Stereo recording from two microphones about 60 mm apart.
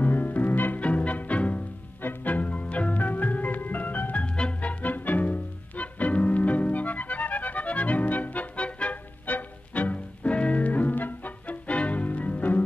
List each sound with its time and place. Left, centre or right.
0.0 s music: left